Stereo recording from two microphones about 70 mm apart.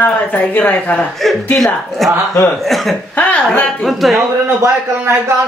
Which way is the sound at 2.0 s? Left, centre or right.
Centre.